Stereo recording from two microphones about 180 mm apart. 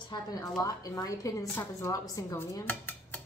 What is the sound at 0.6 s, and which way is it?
A woman's voice, 20° left (ahead or behind).